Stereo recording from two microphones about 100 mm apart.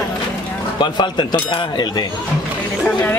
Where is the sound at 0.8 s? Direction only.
50° left (ahead or behind).